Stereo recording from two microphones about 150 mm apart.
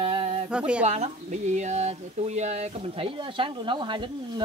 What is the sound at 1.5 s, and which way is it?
Speech, 50° right (ahead or behind).